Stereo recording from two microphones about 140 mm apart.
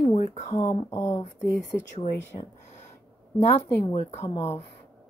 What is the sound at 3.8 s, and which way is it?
Speech, 45° left (ahead or behind).